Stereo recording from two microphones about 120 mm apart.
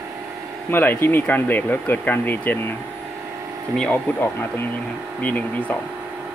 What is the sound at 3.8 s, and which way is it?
Speech, 15° left (ahead or behind).